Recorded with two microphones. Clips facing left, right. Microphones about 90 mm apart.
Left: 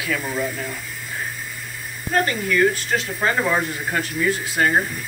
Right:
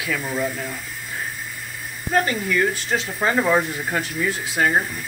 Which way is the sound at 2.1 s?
15° right (ahead or behind).